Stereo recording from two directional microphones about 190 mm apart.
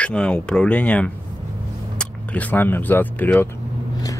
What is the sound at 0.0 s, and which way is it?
Speech, 5° left (ahead or behind).